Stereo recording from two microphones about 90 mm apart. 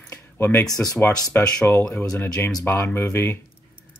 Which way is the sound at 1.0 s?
25° left (ahead or behind).